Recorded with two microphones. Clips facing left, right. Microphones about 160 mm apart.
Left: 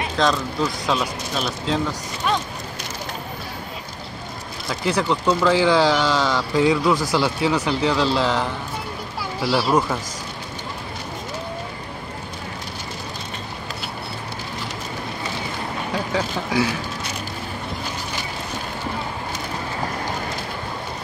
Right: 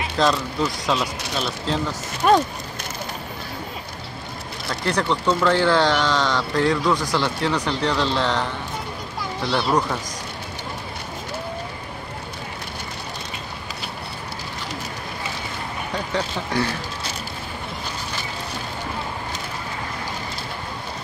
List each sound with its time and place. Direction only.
0.2 s speech: centre (ahead or behind)
4.6 s speech: 5° left (ahead or behind)
16.1 s speech: 5° left (ahead or behind)